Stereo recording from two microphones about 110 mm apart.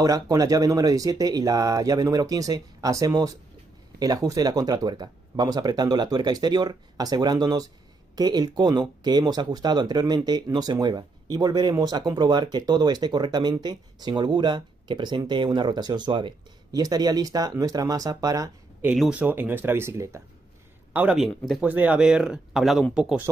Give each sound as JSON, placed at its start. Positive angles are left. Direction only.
{"t": 0.0, "sound": "speech", "side_deg": -35}
{"t": 16.8, "sound": "speech", "side_deg": -35}
{"t": 18.9, "sound": "speech", "side_deg": -10}
{"t": 20.9, "sound": "a man's voice", "side_deg": -15}